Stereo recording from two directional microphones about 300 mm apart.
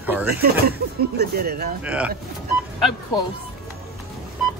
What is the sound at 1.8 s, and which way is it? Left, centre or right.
Speech, centre.